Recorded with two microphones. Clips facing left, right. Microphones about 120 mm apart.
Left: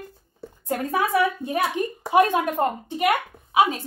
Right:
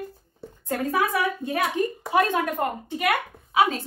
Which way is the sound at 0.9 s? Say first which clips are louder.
Left 4 dB; 25° left (ahead or behind).